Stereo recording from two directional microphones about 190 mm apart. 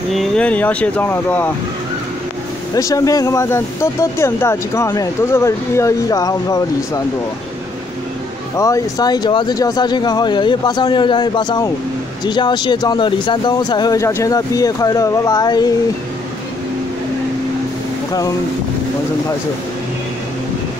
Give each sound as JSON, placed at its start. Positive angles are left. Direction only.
{"t": 0.1, "sound": "speech", "side_deg": 0}
{"t": 2.7, "sound": "speech", "side_deg": 20}
{"t": 8.5, "sound": "speech", "side_deg": 15}